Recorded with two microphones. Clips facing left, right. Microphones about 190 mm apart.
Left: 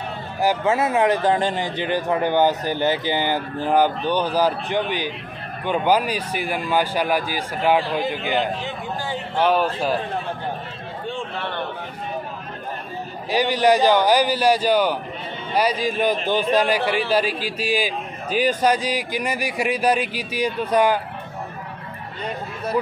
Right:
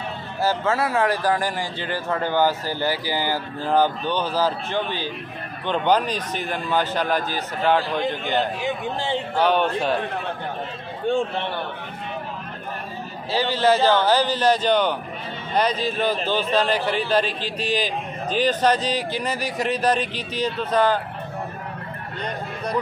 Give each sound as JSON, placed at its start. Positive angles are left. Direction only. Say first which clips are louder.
{"t": 0.4, "sound": "a man's voice", "louder": "left 2 dB", "side_deg": 15}
{"t": 13.3, "sound": "a man's voice", "louder": "left 2 dB", "side_deg": 15}